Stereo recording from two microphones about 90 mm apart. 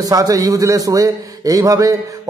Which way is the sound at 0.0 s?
40° right (ahead or behind).